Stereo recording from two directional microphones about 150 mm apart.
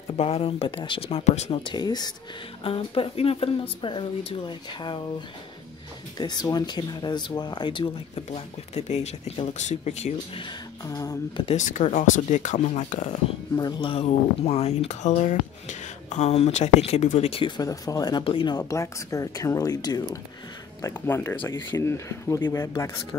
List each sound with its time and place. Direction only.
0.2 s speech: 40° left (ahead or behind)
1.6 s speech: 30° left (ahead or behind)
2.6 s speech: 40° left (ahead or behind)
6.1 s speech: 30° left (ahead or behind)
8.3 s speech: 45° left (ahead or behind)
10.4 s speech: 25° left (ahead or behind)
11.4 s speech: 55° left (ahead or behind)
13.6 s speech: 30° left (ahead or behind)
18.2 s speech: 35° left (ahead or behind)
18.6 s speech: 20° left (ahead or behind)